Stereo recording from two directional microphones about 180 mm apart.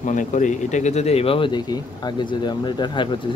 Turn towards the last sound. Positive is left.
turn(degrees=25)  # may be behind; listen again after turning